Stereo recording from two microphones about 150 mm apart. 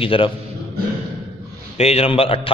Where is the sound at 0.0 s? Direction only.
35° left (ahead or behind).